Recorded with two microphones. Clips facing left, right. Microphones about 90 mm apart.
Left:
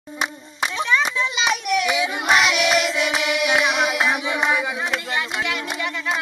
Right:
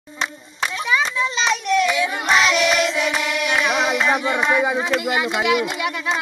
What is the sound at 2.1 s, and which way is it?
Child singing, 10° left (ahead or behind).